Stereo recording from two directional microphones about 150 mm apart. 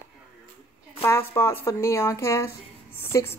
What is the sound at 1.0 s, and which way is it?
A woman's voice, 15° left (ahead or behind).